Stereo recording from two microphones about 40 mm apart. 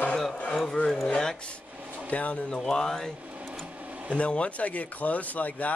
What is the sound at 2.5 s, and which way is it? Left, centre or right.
Speech, centre.